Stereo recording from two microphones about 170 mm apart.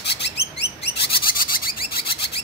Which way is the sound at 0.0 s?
80° left.